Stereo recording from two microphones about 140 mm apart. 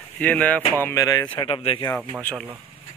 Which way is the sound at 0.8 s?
25° left (ahead or behind).